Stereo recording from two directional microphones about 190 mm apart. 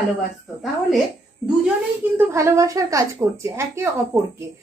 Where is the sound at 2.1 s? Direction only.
15° right (ahead or behind).